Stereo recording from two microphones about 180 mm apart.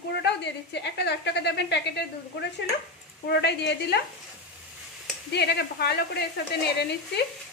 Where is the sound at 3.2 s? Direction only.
65° left (ahead or behind).